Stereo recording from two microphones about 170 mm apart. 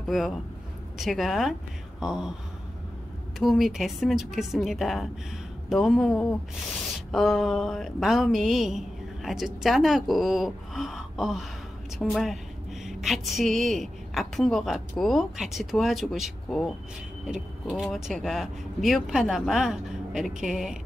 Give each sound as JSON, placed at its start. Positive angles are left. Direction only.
{"t": 0.0, "sound": "speech", "side_deg": 0}
{"t": 3.3, "sound": "speech", "side_deg": 0}
{"t": 17.7, "sound": "speech", "side_deg": 0}